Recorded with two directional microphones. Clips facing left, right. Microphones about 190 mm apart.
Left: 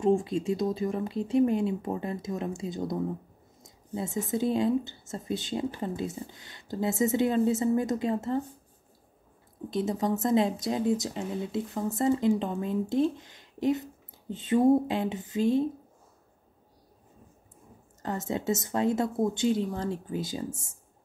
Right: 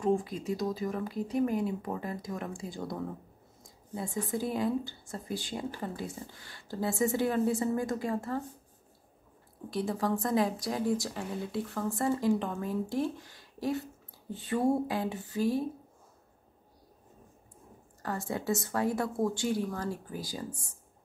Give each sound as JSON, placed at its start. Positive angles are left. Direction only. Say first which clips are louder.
{"t": 0.0, "sound": "speech", "louder": "left 4 dB", "side_deg": 25}
{"t": 9.7, "sound": "speech", "louder": "left 3 dB", "side_deg": 20}
{"t": 18.0, "sound": "speech", "louder": "left 3 dB", "side_deg": 20}